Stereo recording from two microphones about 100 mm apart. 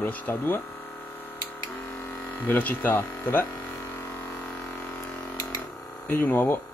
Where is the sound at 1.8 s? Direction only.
20° left (ahead or behind).